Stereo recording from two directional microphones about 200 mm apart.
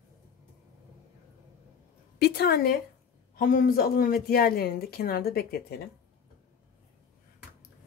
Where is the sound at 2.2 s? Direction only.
50° left (ahead or behind).